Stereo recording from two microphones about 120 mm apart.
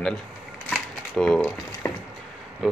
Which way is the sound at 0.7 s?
Centre (ahead or behind).